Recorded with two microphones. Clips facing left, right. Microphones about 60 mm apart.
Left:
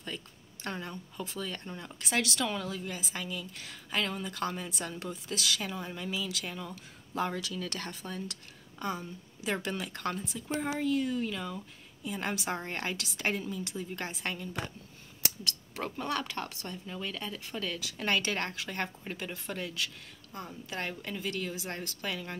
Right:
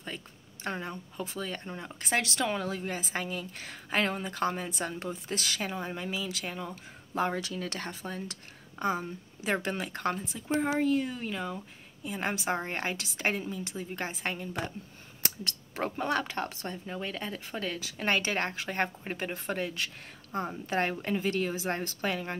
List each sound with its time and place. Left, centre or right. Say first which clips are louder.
0.1 s a woman's voice: even; right
2.0 s a woman's voice: right 2 dB; right